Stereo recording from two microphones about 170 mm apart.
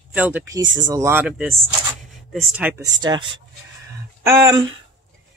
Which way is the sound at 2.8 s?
25° right (ahead or behind).